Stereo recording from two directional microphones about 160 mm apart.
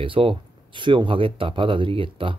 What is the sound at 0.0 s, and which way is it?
Speech, 35° right (ahead or behind).